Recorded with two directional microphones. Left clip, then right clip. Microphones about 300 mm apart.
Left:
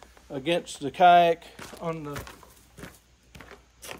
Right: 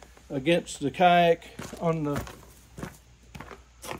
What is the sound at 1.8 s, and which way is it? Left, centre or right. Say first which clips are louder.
Speech: right 5 dB; centre.